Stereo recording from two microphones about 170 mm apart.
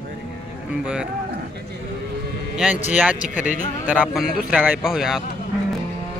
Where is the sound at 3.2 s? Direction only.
50° left (ahead or behind).